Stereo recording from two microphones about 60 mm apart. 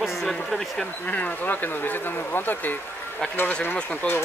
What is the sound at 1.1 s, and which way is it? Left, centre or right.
Speech, left.